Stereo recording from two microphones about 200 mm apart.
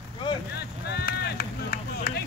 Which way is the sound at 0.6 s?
55° left (ahead or behind).